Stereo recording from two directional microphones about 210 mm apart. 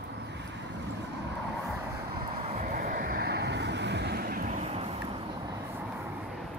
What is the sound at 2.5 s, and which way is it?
Vehicle, 40° right (ahead or behind).